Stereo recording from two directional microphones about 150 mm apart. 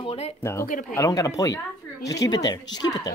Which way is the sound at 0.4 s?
15° left (ahead or behind).